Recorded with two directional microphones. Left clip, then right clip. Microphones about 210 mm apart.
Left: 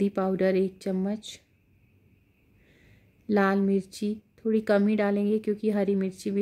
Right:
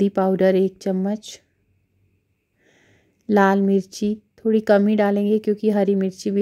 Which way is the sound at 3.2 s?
30° right (ahead or behind).